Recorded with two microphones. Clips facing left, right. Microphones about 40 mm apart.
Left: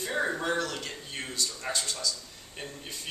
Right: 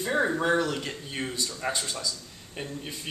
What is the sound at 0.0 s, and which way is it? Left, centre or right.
A man's voice, centre.